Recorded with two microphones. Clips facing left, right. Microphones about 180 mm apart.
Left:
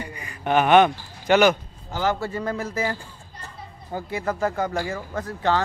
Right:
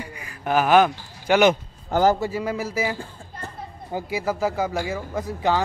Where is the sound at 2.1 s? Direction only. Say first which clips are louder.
Right 2 dB; 10° right (ahead or behind).